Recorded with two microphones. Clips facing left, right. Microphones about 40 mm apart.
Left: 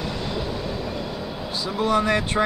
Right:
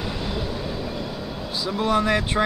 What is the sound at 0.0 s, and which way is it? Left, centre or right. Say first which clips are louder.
Train: even; centre.